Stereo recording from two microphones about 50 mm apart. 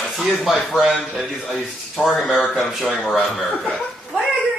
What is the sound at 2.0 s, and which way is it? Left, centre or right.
Speech, centre.